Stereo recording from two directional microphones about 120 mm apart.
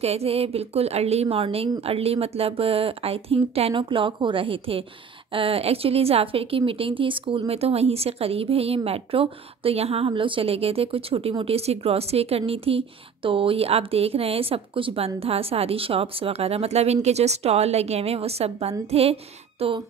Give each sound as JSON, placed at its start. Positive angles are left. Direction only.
{"t": 0.0, "sound": "a woman's voice", "side_deg": -60}